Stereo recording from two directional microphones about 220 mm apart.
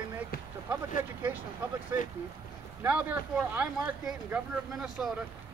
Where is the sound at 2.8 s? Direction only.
5° right (ahead or behind).